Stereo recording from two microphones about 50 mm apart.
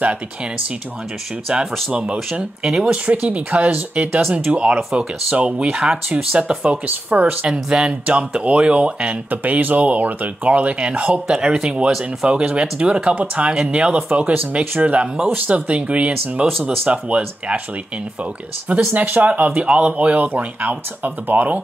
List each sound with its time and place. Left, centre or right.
1.9 s speech: right
3.1 s speech: right
5.7 s speech: centre
6.0 s speech: right
7.4 s speech: centre
9.3 s speech: right
11.2 s speech: centre
18.9 s speech: right